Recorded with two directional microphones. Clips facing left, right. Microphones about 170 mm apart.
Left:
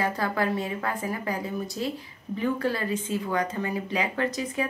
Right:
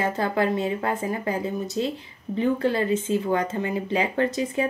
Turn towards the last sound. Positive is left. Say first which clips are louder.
# right 4 dB
turn(degrees=-30)  # may be behind; listen again after turning